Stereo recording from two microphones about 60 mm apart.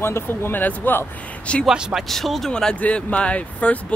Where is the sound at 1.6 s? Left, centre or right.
Centre.